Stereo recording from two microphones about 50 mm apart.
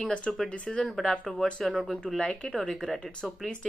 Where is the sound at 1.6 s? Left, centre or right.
Centre.